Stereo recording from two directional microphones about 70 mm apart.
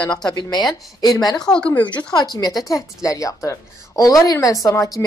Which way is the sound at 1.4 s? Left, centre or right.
Centre.